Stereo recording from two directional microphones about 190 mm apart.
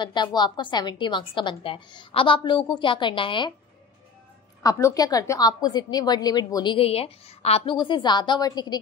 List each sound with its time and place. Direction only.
0.0 s a woman's voice: 25° left (ahead or behind)
4.6 s a woman's voice: 20° left (ahead or behind)